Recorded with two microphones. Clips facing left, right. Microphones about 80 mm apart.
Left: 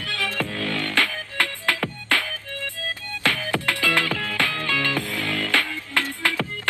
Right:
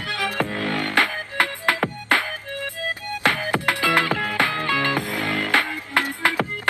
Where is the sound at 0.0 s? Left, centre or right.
Right.